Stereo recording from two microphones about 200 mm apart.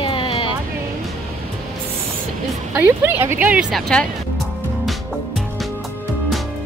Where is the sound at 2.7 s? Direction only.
10° right (ahead or behind).